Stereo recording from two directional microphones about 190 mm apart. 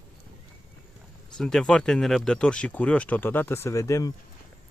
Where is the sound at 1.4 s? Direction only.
5° left (ahead or behind).